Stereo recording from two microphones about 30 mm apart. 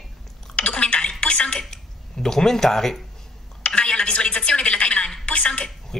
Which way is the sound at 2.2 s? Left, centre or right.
Centre.